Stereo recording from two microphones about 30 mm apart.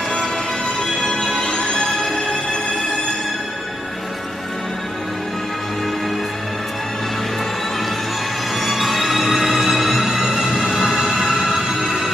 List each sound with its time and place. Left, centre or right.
1.1 s music: left
1.9 s music: centre
8.5 s music: centre